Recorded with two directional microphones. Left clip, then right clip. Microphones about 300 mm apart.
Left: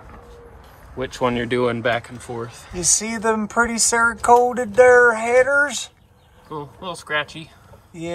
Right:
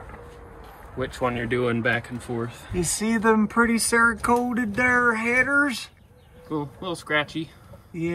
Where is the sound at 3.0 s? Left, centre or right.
Centre.